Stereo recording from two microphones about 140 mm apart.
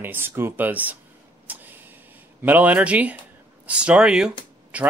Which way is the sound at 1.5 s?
15° right (ahead or behind).